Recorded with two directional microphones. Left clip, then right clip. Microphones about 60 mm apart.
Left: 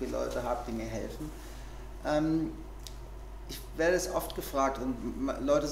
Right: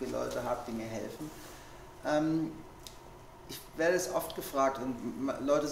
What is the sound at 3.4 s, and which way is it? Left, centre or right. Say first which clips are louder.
A man's voice: left 1 dB; left.